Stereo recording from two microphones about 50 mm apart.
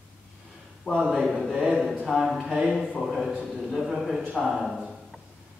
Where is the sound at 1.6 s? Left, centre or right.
Centre.